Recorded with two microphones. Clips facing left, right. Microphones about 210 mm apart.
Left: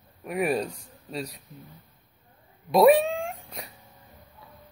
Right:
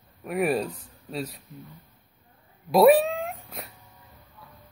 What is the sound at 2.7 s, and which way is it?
Speech, centre (ahead or behind).